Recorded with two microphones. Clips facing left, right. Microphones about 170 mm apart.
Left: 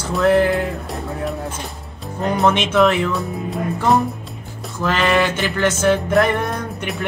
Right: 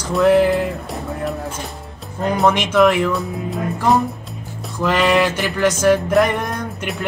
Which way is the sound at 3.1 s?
Centre (ahead or behind).